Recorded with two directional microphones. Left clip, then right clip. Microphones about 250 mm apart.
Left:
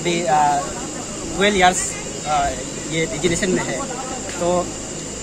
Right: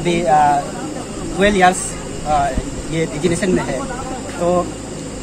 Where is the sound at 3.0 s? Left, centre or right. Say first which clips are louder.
Right 2 dB; centre.